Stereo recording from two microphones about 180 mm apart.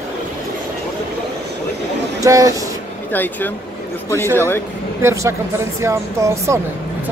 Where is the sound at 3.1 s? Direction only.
10° left (ahead or behind).